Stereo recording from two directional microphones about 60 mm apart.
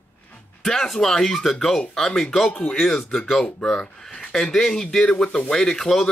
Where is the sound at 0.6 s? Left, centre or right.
Centre.